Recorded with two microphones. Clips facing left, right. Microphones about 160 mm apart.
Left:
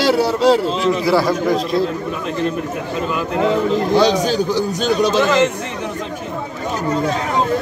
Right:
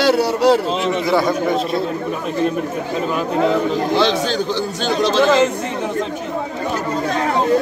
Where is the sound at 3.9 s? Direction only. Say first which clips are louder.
Left 4 dB; 10° left (ahead or behind).